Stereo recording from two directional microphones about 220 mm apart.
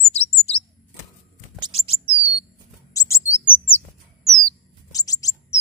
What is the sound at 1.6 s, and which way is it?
Chirp, 25° right (ahead or behind).